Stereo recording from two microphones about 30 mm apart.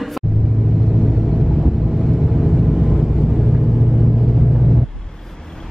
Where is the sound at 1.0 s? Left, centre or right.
Centre.